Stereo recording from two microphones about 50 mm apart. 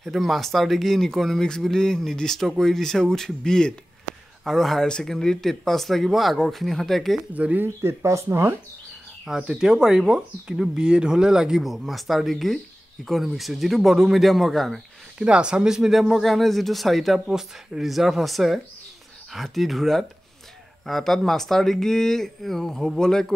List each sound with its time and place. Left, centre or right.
0.0 s speech: centre
7.3 s speech: right
7.6 s speech: right
9.5 s speech: centre
11.6 s speech: centre
15.1 s speech: centre
17.3 s speech: centre